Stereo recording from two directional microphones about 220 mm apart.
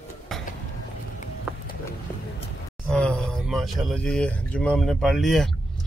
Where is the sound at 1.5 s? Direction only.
5° right (ahead or behind).